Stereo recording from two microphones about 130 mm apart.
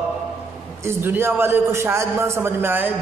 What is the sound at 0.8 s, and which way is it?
A man's voice, 15° right (ahead or behind).